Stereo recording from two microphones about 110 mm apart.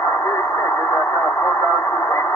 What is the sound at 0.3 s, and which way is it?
Radio, 30° left (ahead or behind).